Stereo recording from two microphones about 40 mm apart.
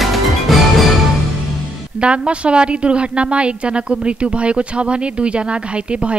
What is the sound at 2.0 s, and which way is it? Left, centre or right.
Speech, right.